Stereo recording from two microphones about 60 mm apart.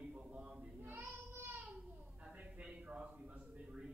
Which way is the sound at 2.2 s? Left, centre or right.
Centre.